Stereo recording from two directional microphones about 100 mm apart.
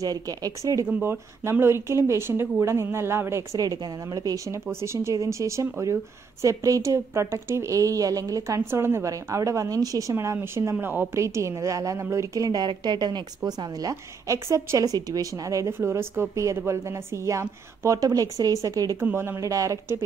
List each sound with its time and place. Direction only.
0.0 s a woman's voice: 40° right (ahead or behind)
3.5 s a woman's voice: 40° right (ahead or behind)
4.6 s a woman's voice: 25° right (ahead or behind)
18.9 s speech: 25° right (ahead or behind)